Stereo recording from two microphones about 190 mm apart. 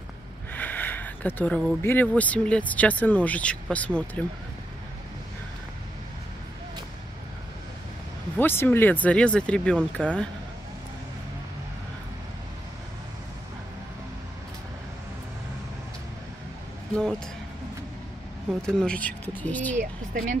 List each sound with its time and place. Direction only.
0.5 s speech: 10° left (ahead or behind)
8.4 s speech: 10° left (ahead or behind)
18.6 s speech: 5° left (ahead or behind)
19.7 s speech: 40° right (ahead or behind)